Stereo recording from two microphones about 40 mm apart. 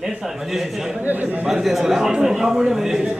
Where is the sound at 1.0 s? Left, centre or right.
Right.